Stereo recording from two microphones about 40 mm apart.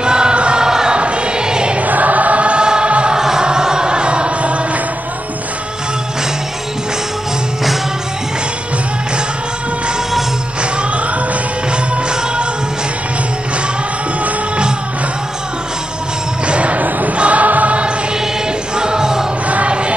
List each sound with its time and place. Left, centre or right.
0.0 s music: right
0.9 s choir: right
1.8 s choir: right
3.2 s music: centre
11.7 s music: right
16.4 s basketball bounce: right
17.2 s choir: right
18.8 s music: centre
19.4 s music: right